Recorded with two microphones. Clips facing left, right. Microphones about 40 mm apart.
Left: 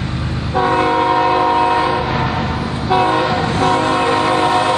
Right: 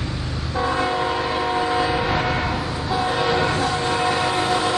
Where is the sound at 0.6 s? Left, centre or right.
Left.